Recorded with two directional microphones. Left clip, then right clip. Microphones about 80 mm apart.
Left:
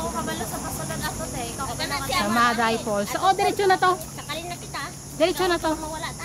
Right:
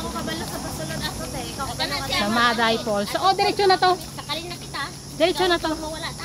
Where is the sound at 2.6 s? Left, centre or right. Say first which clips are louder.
Right 2 dB; centre.